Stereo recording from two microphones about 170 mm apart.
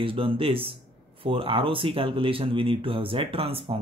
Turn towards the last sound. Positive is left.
turn(degrees=-35)  # may be behind; listen again after turning